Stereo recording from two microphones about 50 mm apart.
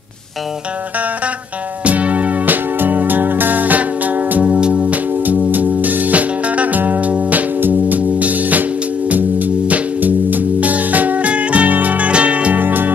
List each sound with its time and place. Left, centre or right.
1.9 s music: right
12.6 s music: right